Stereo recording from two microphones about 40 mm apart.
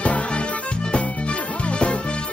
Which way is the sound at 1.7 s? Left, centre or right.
Left.